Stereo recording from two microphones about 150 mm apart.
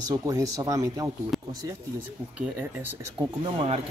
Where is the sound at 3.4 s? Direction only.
35° right (ahead or behind).